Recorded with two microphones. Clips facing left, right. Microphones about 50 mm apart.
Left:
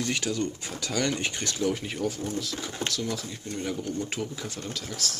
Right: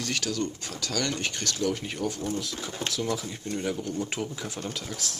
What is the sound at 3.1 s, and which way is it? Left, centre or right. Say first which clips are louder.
Speech: right 3 dB; centre.